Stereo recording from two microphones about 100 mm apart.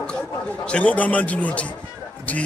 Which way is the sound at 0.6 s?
10° left (ahead or behind).